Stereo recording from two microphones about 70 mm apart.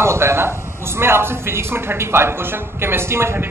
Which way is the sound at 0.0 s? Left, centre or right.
Right.